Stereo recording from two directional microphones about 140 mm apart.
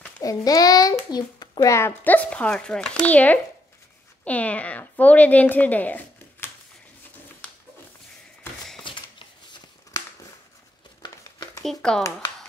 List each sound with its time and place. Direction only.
0.2 s a child's voice: 25° left (ahead or behind)
11.0 s a sound: 30° left (ahead or behind)
11.6 s speech: 5° left (ahead or behind)